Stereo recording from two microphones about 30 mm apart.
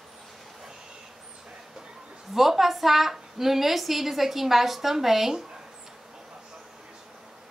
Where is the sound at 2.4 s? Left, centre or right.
Centre.